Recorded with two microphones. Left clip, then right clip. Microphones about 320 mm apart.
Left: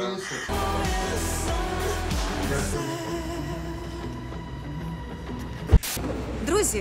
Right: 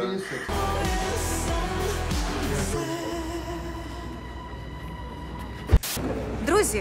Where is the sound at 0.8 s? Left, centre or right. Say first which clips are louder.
Even; centre.